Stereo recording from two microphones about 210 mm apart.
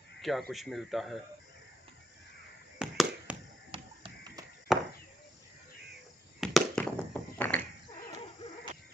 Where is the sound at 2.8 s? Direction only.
5° right (ahead or behind).